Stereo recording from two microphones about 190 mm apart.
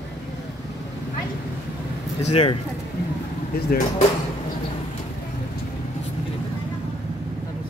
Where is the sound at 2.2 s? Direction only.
35° left (ahead or behind).